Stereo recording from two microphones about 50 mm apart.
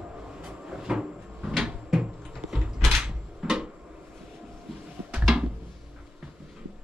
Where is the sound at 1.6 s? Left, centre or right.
Centre.